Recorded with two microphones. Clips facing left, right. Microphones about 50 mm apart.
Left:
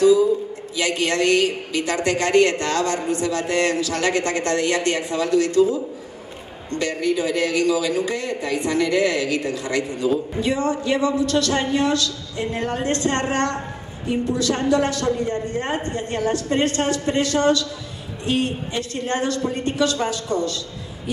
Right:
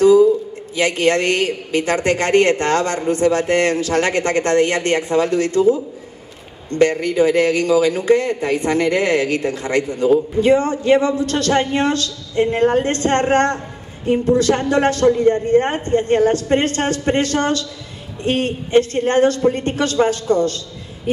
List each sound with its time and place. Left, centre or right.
0.7 s a man's voice: right